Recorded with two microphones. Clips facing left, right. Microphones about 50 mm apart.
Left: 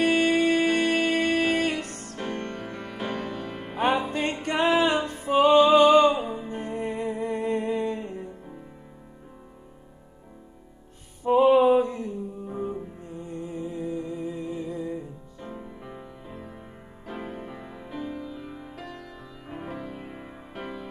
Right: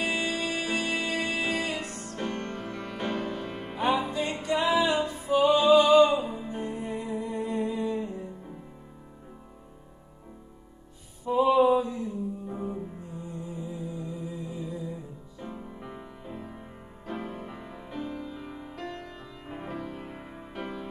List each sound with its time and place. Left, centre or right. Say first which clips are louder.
0.0 s music: left 8 dB; left
2.1 s music: left 1 dB; centre
4.1 s music: left 1 dB; left
6.2 s music: left 1 dB; left
11.2 s mantra: left 4 dB; left
13.3 s music: left 5 dB; left
15.7 s music: left 1 dB; centre